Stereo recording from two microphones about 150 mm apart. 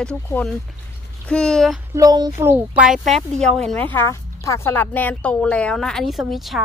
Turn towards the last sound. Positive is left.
turn(degrees=0)  # may be behind; listen again after turning